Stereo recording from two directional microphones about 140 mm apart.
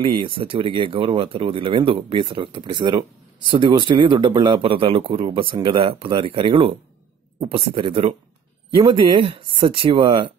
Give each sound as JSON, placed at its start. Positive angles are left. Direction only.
{"t": 0.0, "sound": "speech", "side_deg": -40}